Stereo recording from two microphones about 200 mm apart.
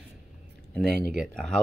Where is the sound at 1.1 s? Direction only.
Centre (ahead or behind).